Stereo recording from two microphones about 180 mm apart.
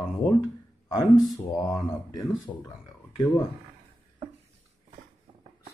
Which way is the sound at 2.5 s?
15° left (ahead or behind).